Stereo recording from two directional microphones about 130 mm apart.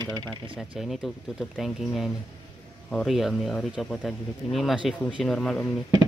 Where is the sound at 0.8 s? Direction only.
5° right (ahead or behind).